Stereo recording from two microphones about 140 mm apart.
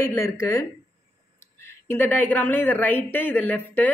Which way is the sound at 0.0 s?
20° left (ahead or behind).